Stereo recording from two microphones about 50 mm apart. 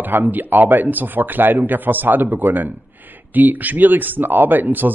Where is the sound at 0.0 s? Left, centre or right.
Right.